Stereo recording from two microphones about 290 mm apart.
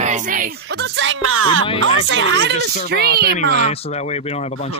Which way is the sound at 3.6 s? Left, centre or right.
Left.